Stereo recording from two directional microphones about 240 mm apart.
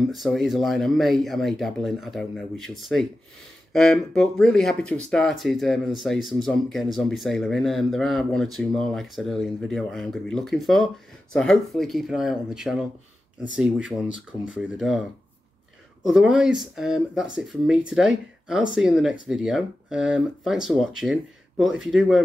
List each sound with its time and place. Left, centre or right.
0.1 s speech: centre
16.0 s speech: centre